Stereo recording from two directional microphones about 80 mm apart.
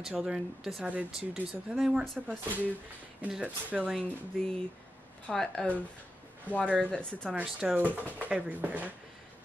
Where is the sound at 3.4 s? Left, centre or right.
Centre.